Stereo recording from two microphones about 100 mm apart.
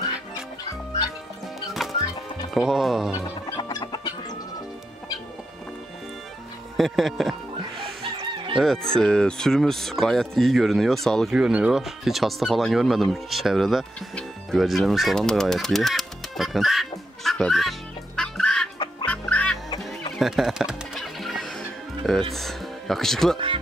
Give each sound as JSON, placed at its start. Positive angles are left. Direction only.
{"t": 1.8, "sound": "music", "side_deg": 0}
{"t": 2.5, "sound": "speech", "side_deg": -5}
{"t": 3.5, "sound": "chicken", "side_deg": 45}
{"t": 6.8, "sound": "speech", "side_deg": 0}
{"t": 7.8, "sound": "chicken", "side_deg": -60}
{"t": 8.5, "sound": "speech", "side_deg": 5}
{"t": 11.3, "sound": "speech", "side_deg": -10}
{"t": 17.2, "sound": "fowl", "side_deg": 5}
{"t": 19.0, "sound": "music", "side_deg": 15}
{"t": 19.8, "sound": "music", "side_deg": 0}
{"t": 22.3, "sound": "speech", "side_deg": 0}
{"t": 23.3, "sound": "speech", "side_deg": -60}